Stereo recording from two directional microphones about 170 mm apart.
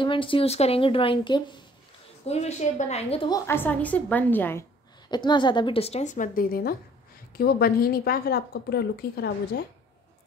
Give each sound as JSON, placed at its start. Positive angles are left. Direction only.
{"t": 0.0, "sound": "speech", "side_deg": 30}
{"t": 2.2, "sound": "speech", "side_deg": 40}
{"t": 3.3, "sound": "a woman's voice", "side_deg": 15}
{"t": 5.1, "sound": "a woman's voice", "side_deg": 25}